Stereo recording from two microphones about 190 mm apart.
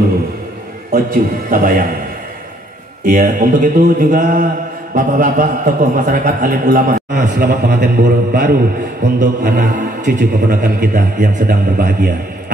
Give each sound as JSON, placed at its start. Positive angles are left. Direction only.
{"t": 0.9, "sound": "a man's voice", "side_deg": -50}
{"t": 3.0, "sound": "a man's voice", "side_deg": -45}